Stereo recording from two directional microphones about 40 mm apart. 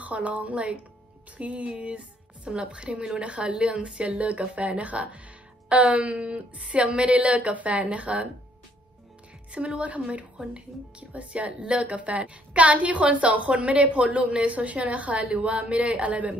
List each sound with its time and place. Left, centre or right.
0.0 s a woman's voice: right
9.8 s a woman's voice: right